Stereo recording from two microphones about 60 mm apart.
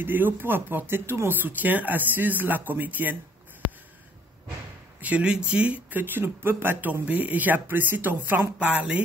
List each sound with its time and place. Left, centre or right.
0.0 s speech: right
5.0 s speech: right
8.5 s speech: right